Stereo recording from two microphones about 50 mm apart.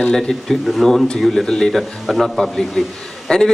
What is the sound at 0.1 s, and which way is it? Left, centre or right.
A man's voice, centre.